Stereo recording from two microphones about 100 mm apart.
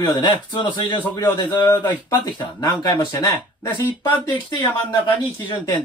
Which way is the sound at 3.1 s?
35° left (ahead or behind).